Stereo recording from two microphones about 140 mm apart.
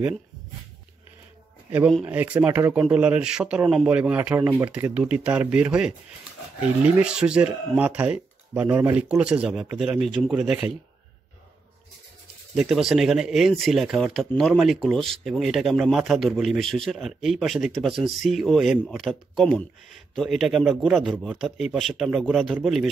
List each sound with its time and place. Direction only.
2.0 s speech: 10° right (ahead or behind)
4.4 s speech: 20° right (ahead or behind)
4.6 s speech: 10° right (ahead or behind)
12.5 s speech: centre (ahead or behind)